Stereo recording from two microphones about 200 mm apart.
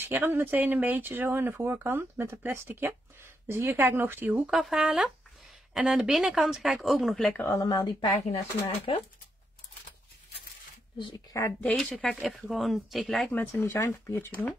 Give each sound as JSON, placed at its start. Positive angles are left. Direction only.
{"t": 0.0, "sound": "speech", "side_deg": -10}
{"t": 7.4, "sound": "speech", "side_deg": 15}
{"t": 11.0, "sound": "speech", "side_deg": 25}
{"t": 11.4, "sound": "speech", "side_deg": 5}